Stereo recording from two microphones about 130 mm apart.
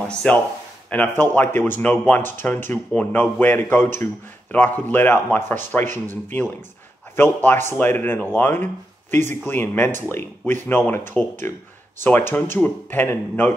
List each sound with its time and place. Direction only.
0.1 s speech: 5° left (ahead or behind)